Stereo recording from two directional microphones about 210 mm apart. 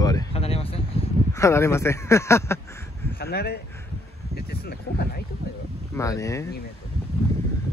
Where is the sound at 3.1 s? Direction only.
50° left (ahead or behind).